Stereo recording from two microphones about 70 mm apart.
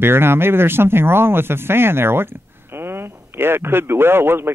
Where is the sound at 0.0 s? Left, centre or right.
Right.